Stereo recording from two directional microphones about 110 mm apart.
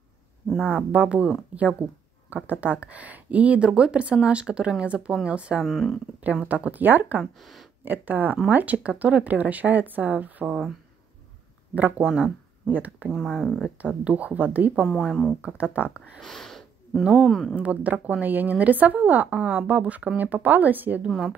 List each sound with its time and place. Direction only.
0.7 s speech: 15° right (ahead or behind)
5.7 s speech: centre (ahead or behind)
6.2 s speech: 15° right (ahead or behind)
7.3 s speech: centre (ahead or behind)
7.8 s speech: 15° right (ahead or behind)
11.7 s speech: 15° right (ahead or behind)
13.1 s speech: 5° right (ahead or behind)
15.0 s speech: centre (ahead or behind)
15.5 s speech: 15° right (ahead or behind)
16.2 s speech: 5° left (ahead or behind)
17.6 s speech: 15° right (ahead or behind)